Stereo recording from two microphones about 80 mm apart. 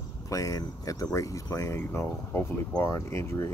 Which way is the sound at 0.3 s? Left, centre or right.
Left.